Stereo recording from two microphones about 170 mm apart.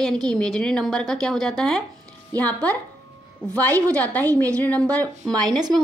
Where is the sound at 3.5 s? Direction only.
15° right (ahead or behind).